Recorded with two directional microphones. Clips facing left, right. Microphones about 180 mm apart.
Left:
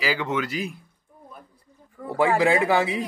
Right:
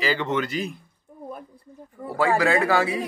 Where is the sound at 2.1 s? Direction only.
20° left (ahead or behind).